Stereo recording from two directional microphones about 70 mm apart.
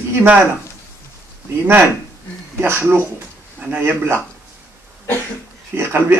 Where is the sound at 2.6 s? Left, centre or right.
Right.